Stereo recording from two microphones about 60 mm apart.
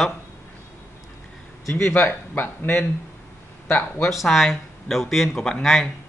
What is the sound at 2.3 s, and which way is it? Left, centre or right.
Speech, left.